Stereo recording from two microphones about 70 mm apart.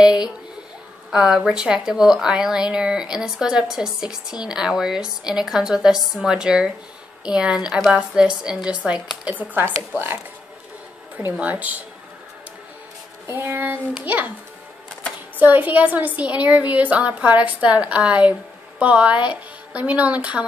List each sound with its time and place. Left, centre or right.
1.1 s a woman's voice: centre; by 9.7 s right
11.1 s a woman's voice: right
13.3 s a sound: right
14.0 s a woman's voice: right
15.3 s a woman's voice: right